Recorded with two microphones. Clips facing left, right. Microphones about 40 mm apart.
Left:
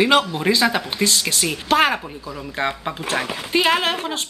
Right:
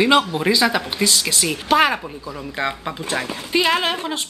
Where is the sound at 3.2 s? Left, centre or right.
Centre.